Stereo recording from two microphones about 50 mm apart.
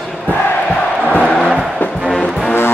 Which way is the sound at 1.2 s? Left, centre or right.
Centre.